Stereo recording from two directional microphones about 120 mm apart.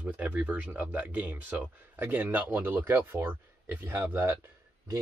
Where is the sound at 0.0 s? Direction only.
15° right (ahead or behind).